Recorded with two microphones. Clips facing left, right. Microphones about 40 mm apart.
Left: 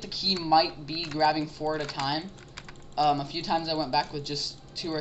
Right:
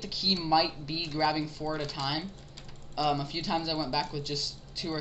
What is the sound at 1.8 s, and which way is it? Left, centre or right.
Speech, left.